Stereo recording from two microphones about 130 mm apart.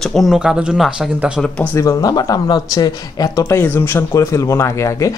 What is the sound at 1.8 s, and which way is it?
Speech, 25° left (ahead or behind).